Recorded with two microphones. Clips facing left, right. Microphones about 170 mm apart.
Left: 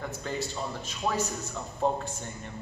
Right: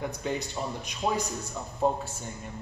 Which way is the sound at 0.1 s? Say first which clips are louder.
Right 2 dB; 15° right (ahead or behind).